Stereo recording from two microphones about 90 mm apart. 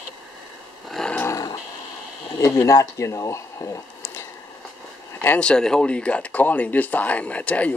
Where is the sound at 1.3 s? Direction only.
40° left (ahead or behind).